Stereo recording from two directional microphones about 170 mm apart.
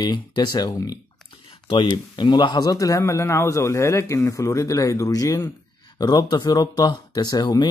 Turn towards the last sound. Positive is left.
turn(degrees=25)  # may be behind; listen again after turning